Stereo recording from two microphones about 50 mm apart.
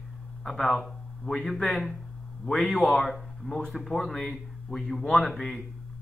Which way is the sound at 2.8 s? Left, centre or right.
Centre.